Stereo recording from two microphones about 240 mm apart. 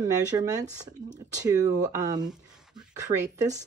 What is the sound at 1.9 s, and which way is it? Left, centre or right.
Speech, centre.